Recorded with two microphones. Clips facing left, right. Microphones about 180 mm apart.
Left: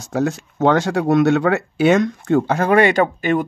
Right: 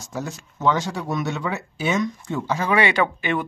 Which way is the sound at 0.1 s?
65° left (ahead or behind).